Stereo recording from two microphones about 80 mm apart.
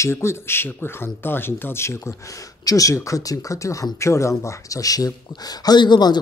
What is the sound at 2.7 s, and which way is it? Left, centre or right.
Speech, left.